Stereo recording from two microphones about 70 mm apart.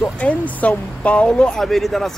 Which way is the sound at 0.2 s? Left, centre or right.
Left.